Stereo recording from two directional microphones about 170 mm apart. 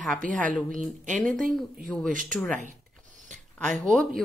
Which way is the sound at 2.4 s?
5° left (ahead or behind).